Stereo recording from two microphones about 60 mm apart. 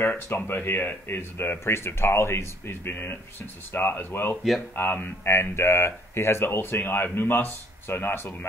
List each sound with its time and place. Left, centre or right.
0.0 s speech: left